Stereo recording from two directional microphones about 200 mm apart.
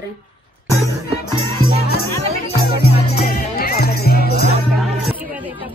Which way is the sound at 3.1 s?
50° left (ahead or behind).